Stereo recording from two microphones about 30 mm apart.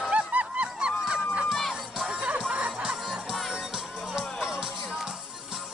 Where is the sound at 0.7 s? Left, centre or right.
Right.